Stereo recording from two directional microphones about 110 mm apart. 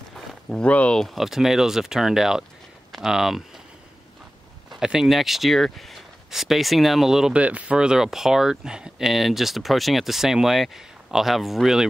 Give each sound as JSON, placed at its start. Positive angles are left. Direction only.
{"t": 0.1, "sound": "speech", "side_deg": 5}
{"t": 4.6, "sound": "speech", "side_deg": -5}